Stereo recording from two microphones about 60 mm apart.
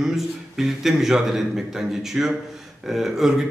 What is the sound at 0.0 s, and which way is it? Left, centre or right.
A man's voice, centre.